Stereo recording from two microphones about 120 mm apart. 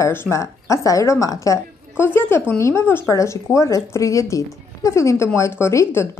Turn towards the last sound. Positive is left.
turn(degrees=20)  # may be behind; listen again after turning